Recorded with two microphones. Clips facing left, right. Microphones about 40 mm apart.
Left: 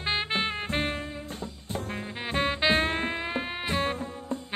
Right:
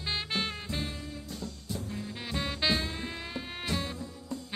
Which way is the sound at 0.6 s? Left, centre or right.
Left.